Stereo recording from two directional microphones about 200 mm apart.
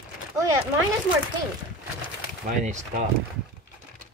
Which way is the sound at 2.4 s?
35° right (ahead or behind).